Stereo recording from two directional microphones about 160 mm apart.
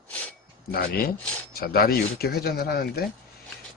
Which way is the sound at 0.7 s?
70° left (ahead or behind).